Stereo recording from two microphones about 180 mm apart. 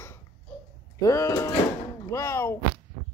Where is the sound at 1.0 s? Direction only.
15° left (ahead or behind).